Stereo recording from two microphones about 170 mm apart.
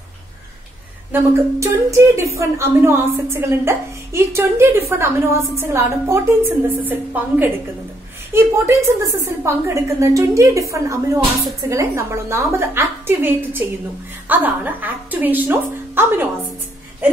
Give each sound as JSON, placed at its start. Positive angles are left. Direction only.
{"t": 1.1, "sound": "a woman's voice", "side_deg": -15}